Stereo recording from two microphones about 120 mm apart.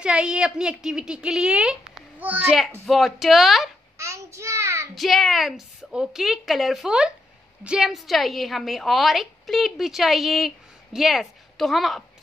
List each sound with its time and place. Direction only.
0.0 s a woman's voice: 5° right (ahead or behind)
2.9 s a woman's voice: centre (ahead or behind)
4.0 s child singing: 25° right (ahead or behind)
4.9 s a woman's voice: centre (ahead or behind)